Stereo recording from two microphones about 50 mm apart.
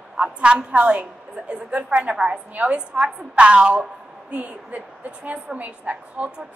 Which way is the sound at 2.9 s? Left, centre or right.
Centre.